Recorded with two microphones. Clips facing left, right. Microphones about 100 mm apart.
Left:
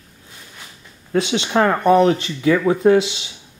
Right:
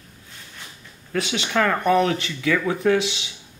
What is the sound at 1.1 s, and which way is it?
Speech, 25° left (ahead or behind).